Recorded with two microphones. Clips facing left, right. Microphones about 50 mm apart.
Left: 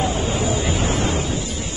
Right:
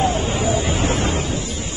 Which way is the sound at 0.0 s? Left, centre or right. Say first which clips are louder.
Right 2 dB; right.